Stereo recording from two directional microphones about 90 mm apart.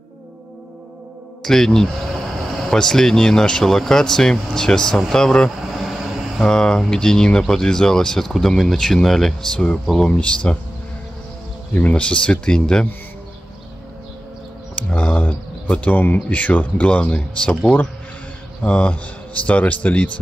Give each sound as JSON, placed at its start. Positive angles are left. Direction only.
{"t": 1.4, "sound": "speech", "side_deg": 5}
{"t": 5.1, "sound": "air conditioning", "side_deg": 10}
{"t": 6.5, "sound": "speech", "side_deg": 10}
{"t": 11.7, "sound": "speech", "side_deg": 15}
{"t": 14.8, "sound": "speech", "side_deg": 15}
{"t": 18.6, "sound": "speech", "side_deg": 15}